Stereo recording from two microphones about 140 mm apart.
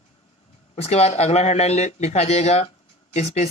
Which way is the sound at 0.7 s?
50° left (ahead or behind).